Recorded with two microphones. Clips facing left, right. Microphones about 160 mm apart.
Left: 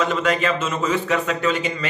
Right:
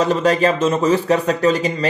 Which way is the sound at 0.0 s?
35° right (ahead or behind).